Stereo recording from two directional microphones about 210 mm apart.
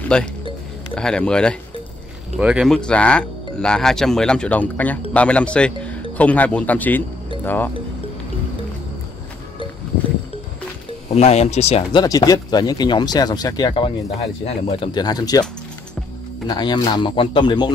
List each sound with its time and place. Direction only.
0.1 s speech: 5° left (ahead or behind)
11.1 s speech: 30° left (ahead or behind)
16.4 s speech: 20° left (ahead or behind)